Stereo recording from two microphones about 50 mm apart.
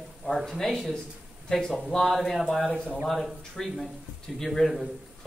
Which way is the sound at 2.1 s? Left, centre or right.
Centre.